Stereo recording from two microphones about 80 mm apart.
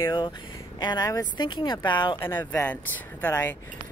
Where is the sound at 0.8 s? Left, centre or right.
Left.